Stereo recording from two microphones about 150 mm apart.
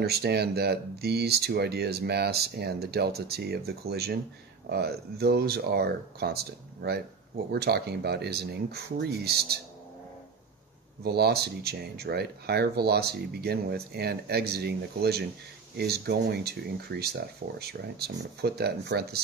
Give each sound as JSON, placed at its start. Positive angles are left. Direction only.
{"t": 0.0, "sound": "speech", "side_deg": -90}
{"t": 11.1, "sound": "speech", "side_deg": -90}